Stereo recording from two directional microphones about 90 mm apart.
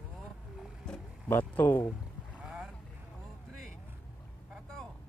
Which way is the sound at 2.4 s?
10° right (ahead or behind).